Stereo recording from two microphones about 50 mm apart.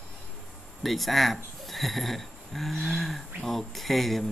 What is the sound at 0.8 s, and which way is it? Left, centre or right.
Speech, centre.